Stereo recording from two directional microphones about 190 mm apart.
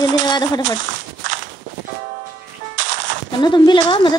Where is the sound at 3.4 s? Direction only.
25° left (ahead or behind).